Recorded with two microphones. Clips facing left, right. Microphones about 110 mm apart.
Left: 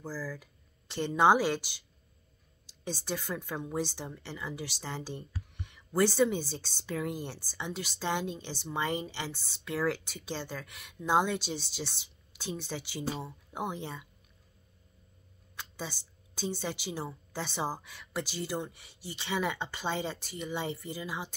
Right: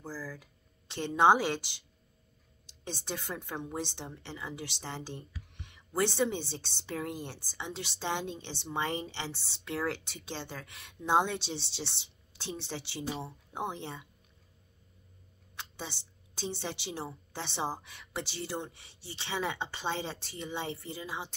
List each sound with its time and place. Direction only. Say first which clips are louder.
0.0 s a woman's voice: left 3 dB; 20° right (ahead or behind)
15.5 s a woman's voice: left 2 dB; 25° right (ahead or behind)